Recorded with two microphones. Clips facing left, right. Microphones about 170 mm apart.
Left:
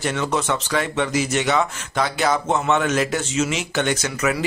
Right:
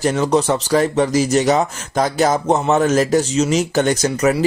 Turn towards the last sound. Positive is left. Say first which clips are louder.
# right 6 dB
turn(degrees=-40)  # may be behind; listen again after turning